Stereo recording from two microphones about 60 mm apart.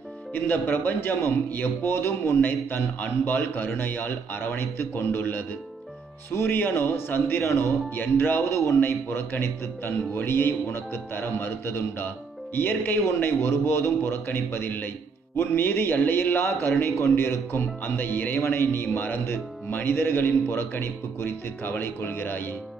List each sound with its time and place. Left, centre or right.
0.3 s speech: left
8.4 s speech: left
8.7 s speech: left